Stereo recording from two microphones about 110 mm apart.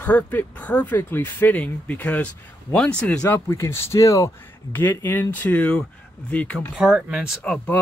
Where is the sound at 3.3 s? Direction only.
30° left (ahead or behind).